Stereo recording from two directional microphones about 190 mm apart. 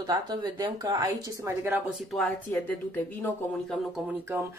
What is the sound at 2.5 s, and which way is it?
Speech, 10° left (ahead or behind).